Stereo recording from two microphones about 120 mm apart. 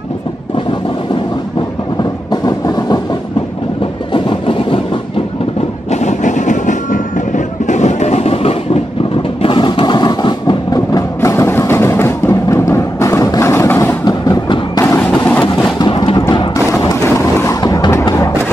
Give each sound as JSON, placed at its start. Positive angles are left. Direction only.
{"t": 2.4, "sound": "train", "side_deg": 35}
{"t": 4.1, "sound": "vehicle", "side_deg": 45}
{"t": 5.9, "sound": "train", "side_deg": 75}
{"t": 9.4, "sound": "a sound", "side_deg": 45}
{"t": 11.1, "sound": "music", "side_deg": 25}
{"t": 14.0, "sound": "music", "side_deg": 35}
{"t": 15.0, "sound": "vehicle", "side_deg": 10}
{"t": 15.8, "sound": "a sound", "side_deg": 45}
{"t": 16.2, "sound": "a sound", "side_deg": 30}
{"t": 16.9, "sound": "vehicle", "side_deg": 25}